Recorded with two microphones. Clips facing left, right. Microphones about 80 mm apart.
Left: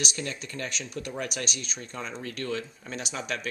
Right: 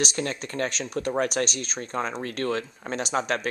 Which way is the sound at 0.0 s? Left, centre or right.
Right.